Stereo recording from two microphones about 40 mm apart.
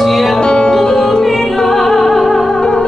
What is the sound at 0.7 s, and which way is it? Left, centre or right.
Music, centre.